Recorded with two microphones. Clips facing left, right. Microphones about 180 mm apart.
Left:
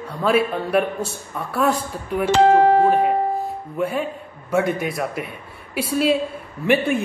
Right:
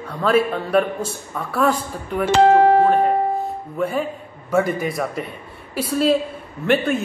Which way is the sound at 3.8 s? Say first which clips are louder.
Right 1 dB; 5° left (ahead or behind).